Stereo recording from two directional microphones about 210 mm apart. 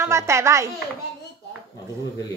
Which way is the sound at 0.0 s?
15° right (ahead or behind).